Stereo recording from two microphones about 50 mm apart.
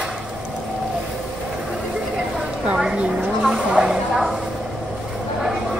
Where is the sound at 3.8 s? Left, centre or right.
Centre.